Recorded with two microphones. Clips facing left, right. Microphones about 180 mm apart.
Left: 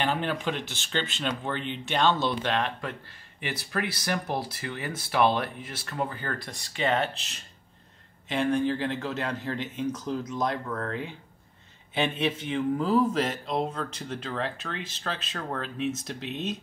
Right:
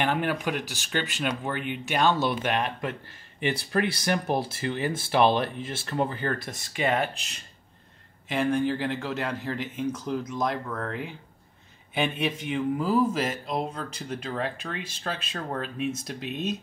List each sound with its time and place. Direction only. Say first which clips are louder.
0.0 s speech: right 2 dB; 15° right (ahead or behind)
8.3 s speech: even; 5° right (ahead or behind)
12.3 s speech: even; 5° right (ahead or behind)